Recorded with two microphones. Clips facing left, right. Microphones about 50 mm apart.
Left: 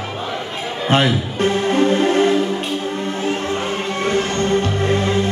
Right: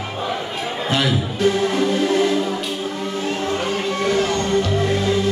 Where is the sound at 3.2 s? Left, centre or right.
Left.